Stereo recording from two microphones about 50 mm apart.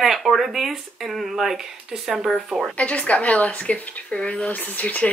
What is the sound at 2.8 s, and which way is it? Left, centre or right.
Speech, left.